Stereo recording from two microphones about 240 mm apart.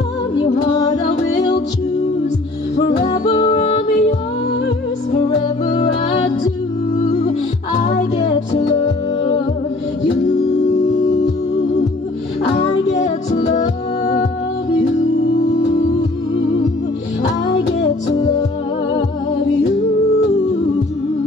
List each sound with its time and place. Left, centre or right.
0.4 s music: left
2.7 s music: left
5.7 s music: left
12.5 s music: left